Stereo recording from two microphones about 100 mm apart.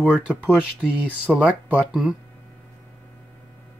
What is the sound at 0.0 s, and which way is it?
Speech, 10° right (ahead or behind).